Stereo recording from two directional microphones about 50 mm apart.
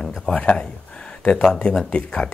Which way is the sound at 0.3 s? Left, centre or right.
Left.